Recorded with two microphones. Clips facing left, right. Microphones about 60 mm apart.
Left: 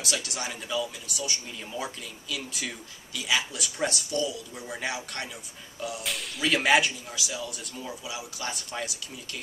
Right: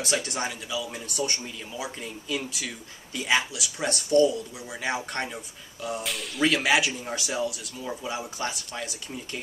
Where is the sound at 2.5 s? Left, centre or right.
Centre.